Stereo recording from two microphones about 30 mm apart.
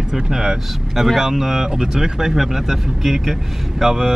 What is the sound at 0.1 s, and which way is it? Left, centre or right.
Speech, centre.